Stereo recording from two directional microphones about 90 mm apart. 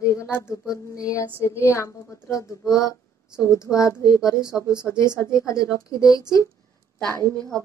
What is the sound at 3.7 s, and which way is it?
Speech, 15° left (ahead or behind).